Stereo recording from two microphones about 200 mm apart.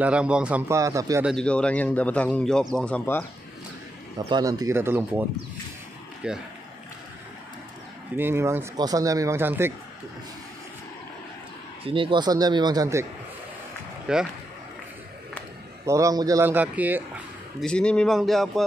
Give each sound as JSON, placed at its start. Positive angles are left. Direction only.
{"t": 0.0, "sound": "speech", "side_deg": -5}
{"t": 1.2, "sound": "speech", "side_deg": 5}
{"t": 4.2, "sound": "speech", "side_deg": -20}
{"t": 6.2, "sound": "speech", "side_deg": -5}
{"t": 8.2, "sound": "speech", "side_deg": -10}
{"t": 11.8, "sound": "speech", "side_deg": -25}
{"t": 14.1, "sound": "speech", "side_deg": -5}
{"t": 15.8, "sound": "speech", "side_deg": -15}
{"t": 17.6, "sound": "speech", "side_deg": 5}